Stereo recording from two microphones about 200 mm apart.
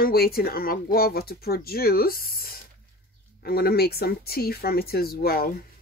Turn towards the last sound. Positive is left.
turn(degrees=50)  # may be behind; listen again after turning